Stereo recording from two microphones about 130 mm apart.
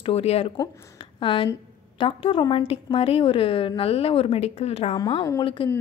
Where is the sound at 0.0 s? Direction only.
50° left (ahead or behind).